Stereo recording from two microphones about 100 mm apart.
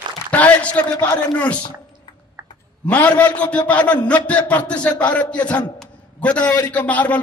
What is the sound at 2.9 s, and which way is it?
A man's voice, 15° left (ahead or behind).